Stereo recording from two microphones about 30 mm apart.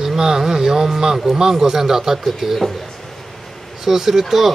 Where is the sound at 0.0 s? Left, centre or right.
Centre.